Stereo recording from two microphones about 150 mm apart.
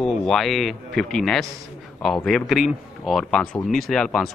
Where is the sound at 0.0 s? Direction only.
5° left (ahead or behind).